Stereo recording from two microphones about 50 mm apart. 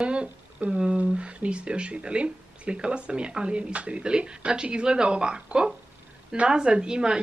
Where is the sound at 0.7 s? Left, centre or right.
Centre.